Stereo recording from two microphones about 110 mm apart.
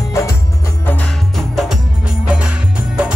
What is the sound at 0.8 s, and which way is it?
Music, 15° left (ahead or behind).